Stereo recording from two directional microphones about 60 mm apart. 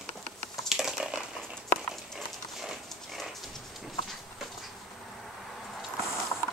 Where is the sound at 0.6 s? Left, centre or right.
Centre.